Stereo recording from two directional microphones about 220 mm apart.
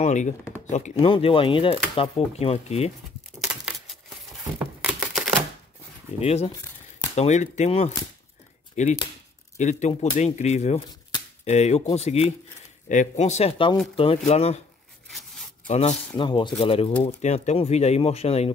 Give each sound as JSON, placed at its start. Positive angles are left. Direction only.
{"t": 0.0, "sound": "a sound", "side_deg": 35}
{"t": 0.7, "sound": "speech", "side_deg": 30}
{"t": 3.3, "sound": "a sound", "side_deg": 0}
{"t": 6.1, "sound": "speech", "side_deg": 30}
{"t": 15.0, "sound": "zipper", "side_deg": 0}
{"t": 15.6, "sound": "speech", "side_deg": 30}